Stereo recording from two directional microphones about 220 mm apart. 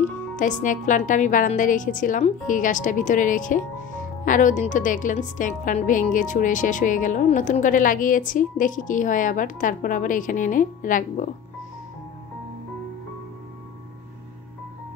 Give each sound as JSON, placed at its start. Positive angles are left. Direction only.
{"t": 0.4, "sound": "a woman's voice", "side_deg": 35}